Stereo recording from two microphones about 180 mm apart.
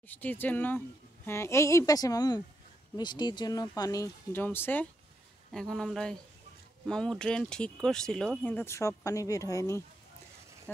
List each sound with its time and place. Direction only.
0.1 s speech: 10° left (ahead or behind)